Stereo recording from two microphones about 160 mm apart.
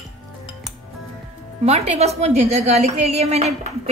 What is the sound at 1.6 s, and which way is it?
A woman's voice, 40° right (ahead or behind).